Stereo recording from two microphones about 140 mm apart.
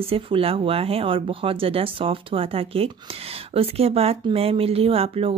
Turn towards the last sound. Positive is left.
turn(degrees=-45)  # may be behind; listen again after turning